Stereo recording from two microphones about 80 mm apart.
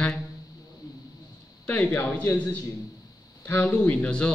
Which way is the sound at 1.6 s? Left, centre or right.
Centre.